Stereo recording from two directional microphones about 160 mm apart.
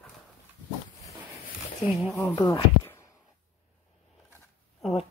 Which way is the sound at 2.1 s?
15° left (ahead or behind).